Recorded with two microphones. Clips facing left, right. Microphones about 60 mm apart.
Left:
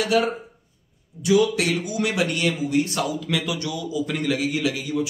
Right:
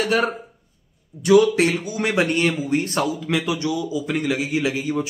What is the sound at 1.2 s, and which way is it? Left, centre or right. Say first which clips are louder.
Speech: right 4 dB; right.